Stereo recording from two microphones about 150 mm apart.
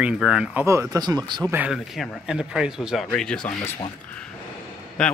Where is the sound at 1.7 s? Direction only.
Centre (ahead or behind).